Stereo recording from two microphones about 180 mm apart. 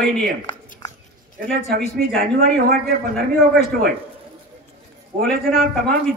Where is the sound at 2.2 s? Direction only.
55° right (ahead or behind).